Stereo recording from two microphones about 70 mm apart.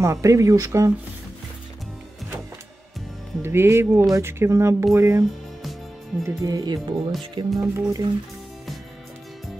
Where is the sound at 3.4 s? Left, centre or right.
Right.